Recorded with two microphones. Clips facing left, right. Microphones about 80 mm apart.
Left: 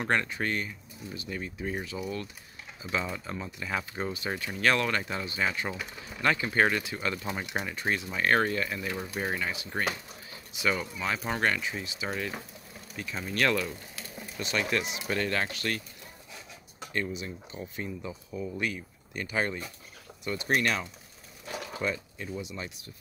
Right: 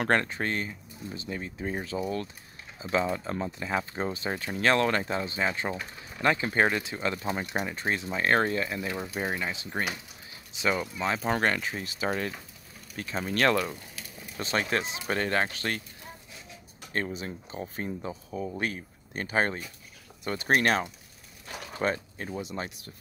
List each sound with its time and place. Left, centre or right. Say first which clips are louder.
0.0 s speech: right 2 dB; right
5.8 s speech: even; centre
6.2 s speech: right 1 dB; right
16.9 s speech: right 1 dB; right